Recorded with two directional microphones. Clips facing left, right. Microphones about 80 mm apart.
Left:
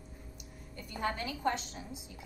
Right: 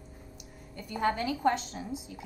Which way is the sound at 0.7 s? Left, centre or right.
Right.